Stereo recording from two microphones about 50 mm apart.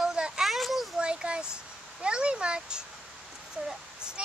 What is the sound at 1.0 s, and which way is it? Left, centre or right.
A child's voice, centre.